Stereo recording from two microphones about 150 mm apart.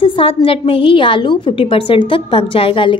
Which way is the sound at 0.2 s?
35° left (ahead or behind).